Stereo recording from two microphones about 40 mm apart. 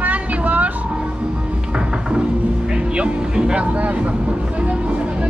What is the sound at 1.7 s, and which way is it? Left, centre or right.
Music, right.